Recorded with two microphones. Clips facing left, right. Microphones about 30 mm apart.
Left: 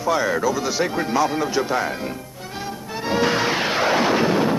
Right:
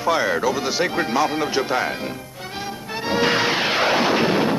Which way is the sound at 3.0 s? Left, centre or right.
Right.